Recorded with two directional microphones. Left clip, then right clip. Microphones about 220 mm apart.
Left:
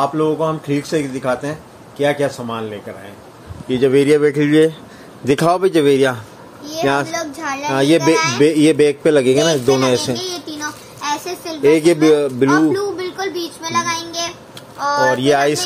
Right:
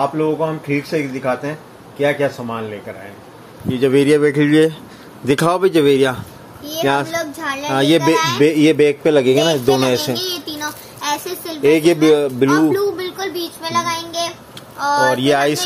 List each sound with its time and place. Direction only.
0.0 s speech: 15° left (ahead or behind)
3.8 s a man's voice: 10° left (ahead or behind)
10.6 s a sound: centre (ahead or behind)
14.8 s a man's voice: centre (ahead or behind)